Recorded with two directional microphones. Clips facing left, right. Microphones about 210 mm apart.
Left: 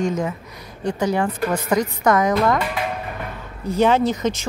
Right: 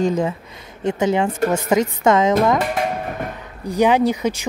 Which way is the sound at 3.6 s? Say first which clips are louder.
Right 1 dB; 15° right (ahead or behind).